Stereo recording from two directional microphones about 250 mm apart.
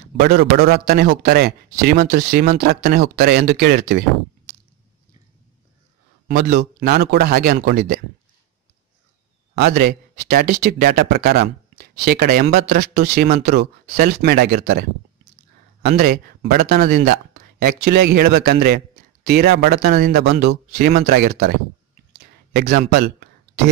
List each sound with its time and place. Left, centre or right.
0.2 s speech: right
6.2 s speech: right
9.6 s speech: right
22.2 s a sound: right